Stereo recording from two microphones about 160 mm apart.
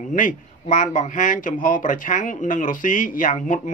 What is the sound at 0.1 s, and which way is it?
Speech, 55° left (ahead or behind).